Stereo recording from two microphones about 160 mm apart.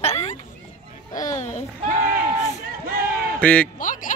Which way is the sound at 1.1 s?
20° left (ahead or behind).